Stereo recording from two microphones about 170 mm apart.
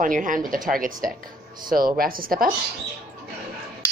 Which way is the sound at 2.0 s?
55° right (ahead or behind).